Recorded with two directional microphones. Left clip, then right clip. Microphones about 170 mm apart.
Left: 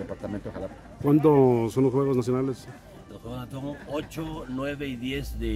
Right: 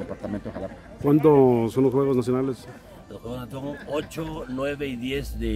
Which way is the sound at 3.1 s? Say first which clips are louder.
Right 4 dB; 15° right (ahead or behind).